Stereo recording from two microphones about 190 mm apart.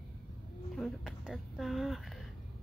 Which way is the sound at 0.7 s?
Centre (ahead or behind).